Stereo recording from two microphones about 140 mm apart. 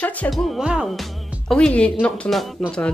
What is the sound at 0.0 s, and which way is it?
Speech, 10° left (ahead or behind).